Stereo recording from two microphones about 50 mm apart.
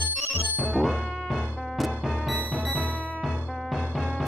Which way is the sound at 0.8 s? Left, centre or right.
Centre.